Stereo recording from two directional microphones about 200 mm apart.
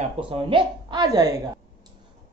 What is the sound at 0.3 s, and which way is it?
Speech, 25° right (ahead or behind).